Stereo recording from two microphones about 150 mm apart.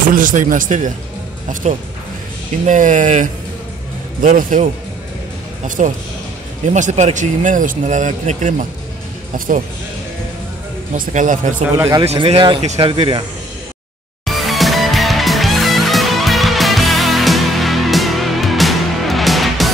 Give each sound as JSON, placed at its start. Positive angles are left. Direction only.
{"t": 0.1, "sound": "speech", "side_deg": -60}
{"t": 5.8, "sound": "speech", "side_deg": -50}
{"t": 10.9, "sound": "speech", "side_deg": -55}
{"t": 12.0, "sound": "speech", "side_deg": -45}
{"t": 14.2, "sound": "music", "side_deg": 0}